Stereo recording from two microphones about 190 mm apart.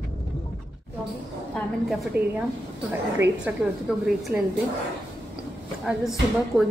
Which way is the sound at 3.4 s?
Centre (ahead or behind).